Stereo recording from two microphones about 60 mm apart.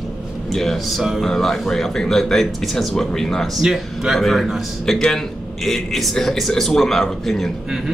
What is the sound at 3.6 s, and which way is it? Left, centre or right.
A man's voice, centre.